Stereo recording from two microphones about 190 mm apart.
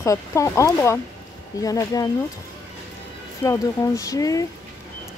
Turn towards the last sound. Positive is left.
turn(degrees=20)  # may be behind; listen again after turning